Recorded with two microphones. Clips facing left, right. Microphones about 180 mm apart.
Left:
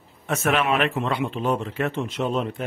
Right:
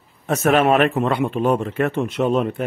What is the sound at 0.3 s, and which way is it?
Speech, 40° right (ahead or behind).